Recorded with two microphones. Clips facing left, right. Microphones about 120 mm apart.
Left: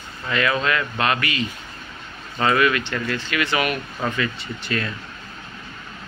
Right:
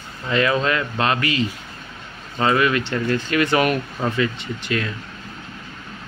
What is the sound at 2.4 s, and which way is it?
Speech, 25° right (ahead or behind).